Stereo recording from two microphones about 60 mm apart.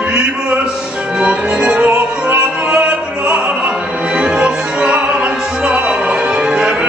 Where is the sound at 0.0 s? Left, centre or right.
Centre.